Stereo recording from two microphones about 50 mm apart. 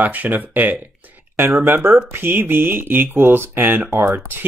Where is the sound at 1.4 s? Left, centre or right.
Right.